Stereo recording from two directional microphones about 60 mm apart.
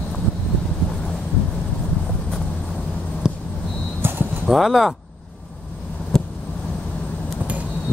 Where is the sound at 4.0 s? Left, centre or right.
Right.